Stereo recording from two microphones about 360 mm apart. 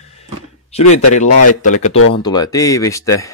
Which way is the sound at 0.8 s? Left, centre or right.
Left.